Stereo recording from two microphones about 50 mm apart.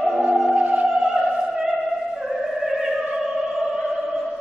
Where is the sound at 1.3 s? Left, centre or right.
Centre.